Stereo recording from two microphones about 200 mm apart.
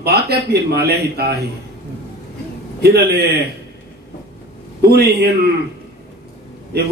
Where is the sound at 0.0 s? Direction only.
50° right (ahead or behind).